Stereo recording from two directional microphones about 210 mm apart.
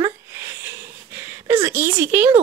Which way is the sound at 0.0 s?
15° right (ahead or behind).